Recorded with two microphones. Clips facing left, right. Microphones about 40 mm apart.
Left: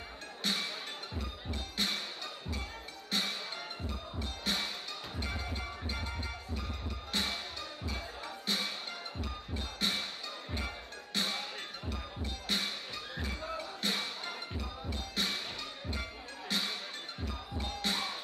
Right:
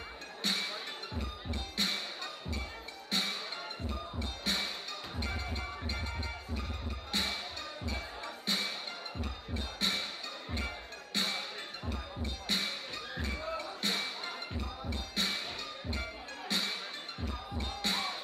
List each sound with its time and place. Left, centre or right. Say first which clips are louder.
0.4 s music: even; centre
1.8 s music: even; centre
3.1 s music: even; centre
7.1 s music: even; centre
11.1 s music: even; centre
12.4 s music: even; centre
16.4 s music: even; centre